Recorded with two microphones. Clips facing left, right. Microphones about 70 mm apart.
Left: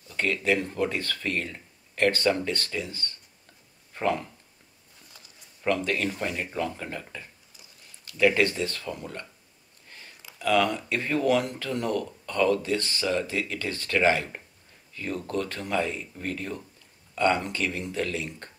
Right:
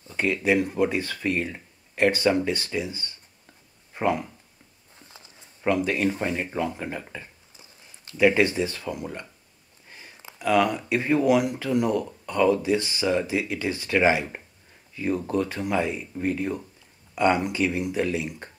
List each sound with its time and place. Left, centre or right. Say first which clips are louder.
0.2 s speech: right 3 dB; centre
4.9 s a sound: right 4 dB; right
5.7 s speech: right 3 dB; centre
8.2 s speech: right 3 dB; centre
9.8 s a sound: right 2 dB; centre
10.4 s speech: right 2 dB; centre